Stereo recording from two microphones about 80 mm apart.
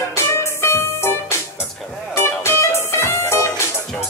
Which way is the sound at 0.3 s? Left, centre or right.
Left.